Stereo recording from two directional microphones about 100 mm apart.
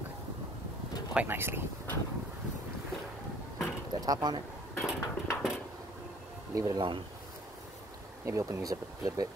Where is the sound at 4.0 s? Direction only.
45° right (ahead or behind).